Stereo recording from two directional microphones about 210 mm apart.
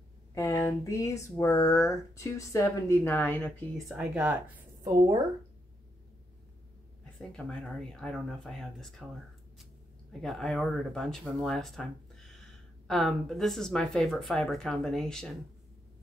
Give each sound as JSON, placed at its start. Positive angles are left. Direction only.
{"t": 0.3, "sound": "speech", "side_deg": 15}
{"t": 3.9, "sound": "speech", "side_deg": -5}
{"t": 7.2, "sound": "speech", "side_deg": 0}
{"t": 10.2, "sound": "speech", "side_deg": 0}